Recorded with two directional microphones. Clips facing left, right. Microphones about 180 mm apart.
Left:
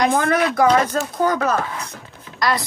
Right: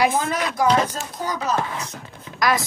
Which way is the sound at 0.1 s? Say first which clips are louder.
Left 5 dB; 60° left (ahead or behind).